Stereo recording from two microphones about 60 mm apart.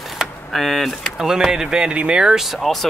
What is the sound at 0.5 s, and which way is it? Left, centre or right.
Speech, centre.